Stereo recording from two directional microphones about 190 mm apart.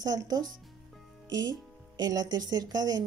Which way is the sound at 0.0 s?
20° right (ahead or behind).